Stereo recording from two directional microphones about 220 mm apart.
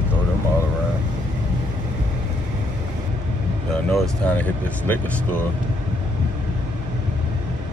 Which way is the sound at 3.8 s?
5° left (ahead or behind).